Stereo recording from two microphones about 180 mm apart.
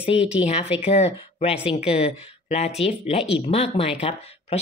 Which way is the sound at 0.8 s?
35° left (ahead or behind).